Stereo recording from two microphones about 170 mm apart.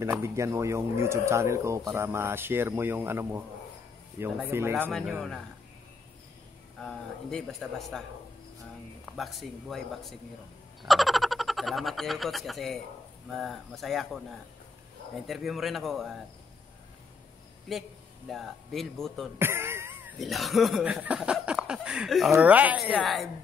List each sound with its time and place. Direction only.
0.0 s speech: 15° right (ahead or behind)
6.8 s speech: 5° left (ahead or behind)
9.1 s speech: centre (ahead or behind)
15.2 s speech: centre (ahead or behind)
17.7 s speech: centre (ahead or behind)
19.3 s speech: 15° right (ahead or behind)
20.2 s speech: centre (ahead or behind)